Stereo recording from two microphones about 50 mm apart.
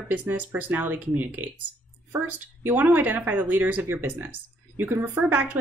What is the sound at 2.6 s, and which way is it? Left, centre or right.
Speech, right.